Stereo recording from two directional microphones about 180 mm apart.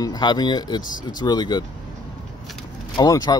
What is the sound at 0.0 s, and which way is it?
Speech, 25° left (ahead or behind).